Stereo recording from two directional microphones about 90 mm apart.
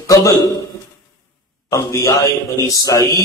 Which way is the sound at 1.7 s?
35° left (ahead or behind).